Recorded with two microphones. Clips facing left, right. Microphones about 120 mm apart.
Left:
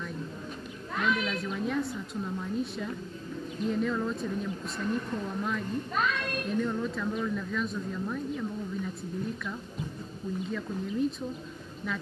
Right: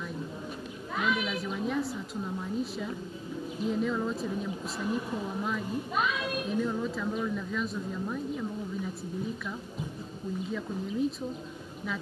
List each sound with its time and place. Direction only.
0.9 s a woman's voice: 5° right (ahead or behind)
10.5 s speech: centre (ahead or behind)